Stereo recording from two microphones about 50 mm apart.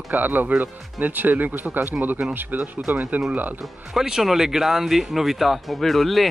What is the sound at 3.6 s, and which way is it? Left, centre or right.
Speech, centre.